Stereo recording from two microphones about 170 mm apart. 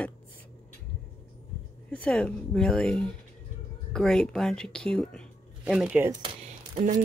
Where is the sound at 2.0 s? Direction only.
5° left (ahead or behind).